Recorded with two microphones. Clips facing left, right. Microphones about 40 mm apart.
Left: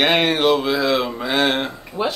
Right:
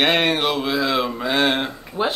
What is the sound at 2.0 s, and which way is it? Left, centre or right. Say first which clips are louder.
Music: even; right.